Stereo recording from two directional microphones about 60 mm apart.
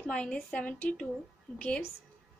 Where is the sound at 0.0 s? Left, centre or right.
Centre.